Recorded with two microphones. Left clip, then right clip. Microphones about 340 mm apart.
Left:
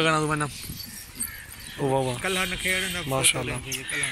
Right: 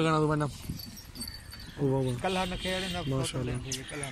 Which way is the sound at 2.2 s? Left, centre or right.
Right.